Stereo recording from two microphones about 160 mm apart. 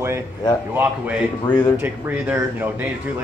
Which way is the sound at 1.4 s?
25° left (ahead or behind).